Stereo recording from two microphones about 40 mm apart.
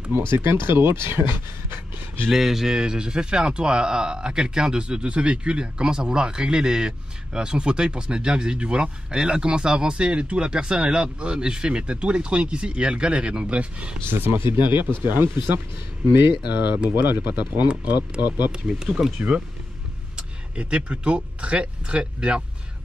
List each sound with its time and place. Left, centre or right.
0.3 s speech: right
2.3 s a man's voice: centre; by 13.9 s right
14.0 s speech: right
17.3 s speech: right
18.7 s speech: centre
20.2 s speech: right